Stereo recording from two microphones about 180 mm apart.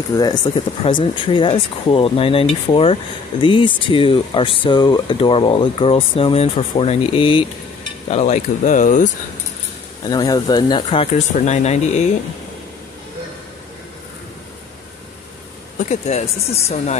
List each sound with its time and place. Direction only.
0.1 s speech: 20° left (ahead or behind); by 9.1 s 45° left (ahead or behind)
10.0 s speech: 20° left (ahead or behind); by 12.1 s 40° left (ahead or behind)
15.8 s speech: 40° left (ahead or behind)